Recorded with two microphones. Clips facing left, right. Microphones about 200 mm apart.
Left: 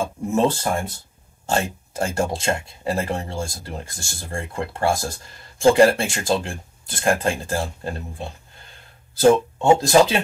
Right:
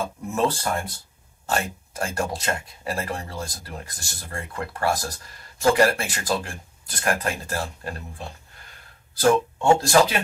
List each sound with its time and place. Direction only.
0.0 s speech: 25° left (ahead or behind)